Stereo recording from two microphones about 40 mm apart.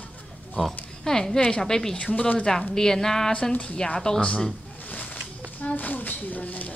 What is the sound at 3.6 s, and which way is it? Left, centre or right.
Speech, left.